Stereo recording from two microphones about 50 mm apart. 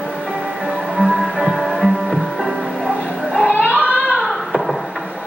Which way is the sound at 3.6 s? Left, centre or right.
Right.